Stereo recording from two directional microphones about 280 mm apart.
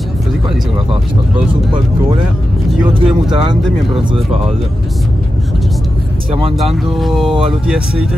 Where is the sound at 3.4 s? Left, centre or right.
Centre.